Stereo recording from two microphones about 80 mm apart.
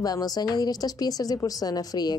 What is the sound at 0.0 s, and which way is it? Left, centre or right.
A woman's voice, left.